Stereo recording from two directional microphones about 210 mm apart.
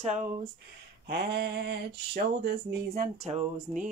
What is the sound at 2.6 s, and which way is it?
Music, 40° right (ahead or behind).